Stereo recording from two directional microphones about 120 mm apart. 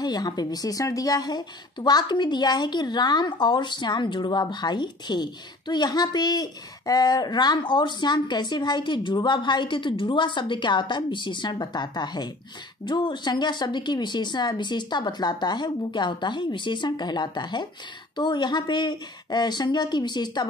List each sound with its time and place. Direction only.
0.0 s a woman's voice: 35° left (ahead or behind)